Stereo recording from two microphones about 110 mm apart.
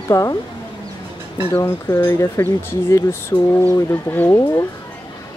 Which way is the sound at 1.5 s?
25° left (ahead or behind).